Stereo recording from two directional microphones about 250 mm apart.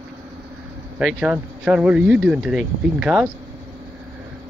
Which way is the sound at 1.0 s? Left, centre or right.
Centre.